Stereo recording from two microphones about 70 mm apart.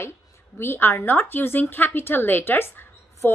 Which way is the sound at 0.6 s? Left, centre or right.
Left.